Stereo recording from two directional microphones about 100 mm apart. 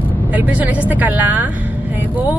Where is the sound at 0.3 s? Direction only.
15° right (ahead or behind).